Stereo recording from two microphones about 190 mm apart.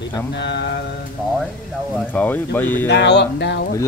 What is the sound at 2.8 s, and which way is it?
Speech, 65° left (ahead or behind).